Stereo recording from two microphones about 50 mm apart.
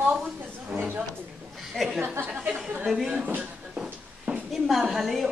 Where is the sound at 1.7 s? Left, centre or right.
Centre.